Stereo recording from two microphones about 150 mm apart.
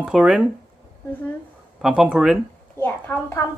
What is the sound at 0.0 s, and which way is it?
Speech, 5° right (ahead or behind).